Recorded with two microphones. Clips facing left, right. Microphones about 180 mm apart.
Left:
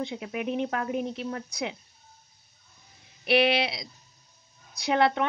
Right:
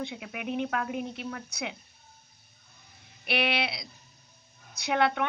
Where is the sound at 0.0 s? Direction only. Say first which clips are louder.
Left 5 dB; 35° left (ahead or behind).